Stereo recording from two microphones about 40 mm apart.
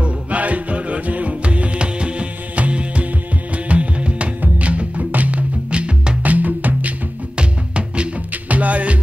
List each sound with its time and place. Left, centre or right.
0.0 s music: right
5.7 s music: right
6.2 s music: right
7.3 s music: right
8.3 s music: right